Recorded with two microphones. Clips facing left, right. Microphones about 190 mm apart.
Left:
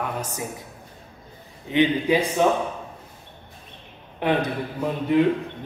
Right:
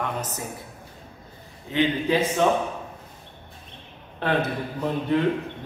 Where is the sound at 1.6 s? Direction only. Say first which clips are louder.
Left 3 dB; 15° left (ahead or behind).